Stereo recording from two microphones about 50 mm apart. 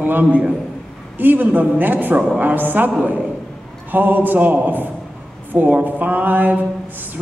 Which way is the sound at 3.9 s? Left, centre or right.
Right.